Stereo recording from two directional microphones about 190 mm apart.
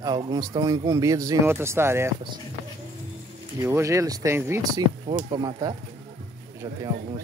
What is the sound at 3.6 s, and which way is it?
Speech, 15° right (ahead or behind).